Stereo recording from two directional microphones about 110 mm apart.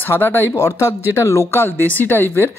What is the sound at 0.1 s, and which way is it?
Speech, 20° left (ahead or behind).